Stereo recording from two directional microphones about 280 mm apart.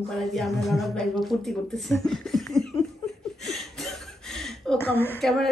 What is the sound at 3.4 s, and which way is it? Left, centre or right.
A woman's voice, centre.